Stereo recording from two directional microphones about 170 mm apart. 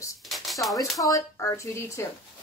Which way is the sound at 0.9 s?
20° left (ahead or behind).